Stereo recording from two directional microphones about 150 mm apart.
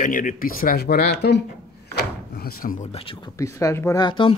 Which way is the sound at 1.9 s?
90° left.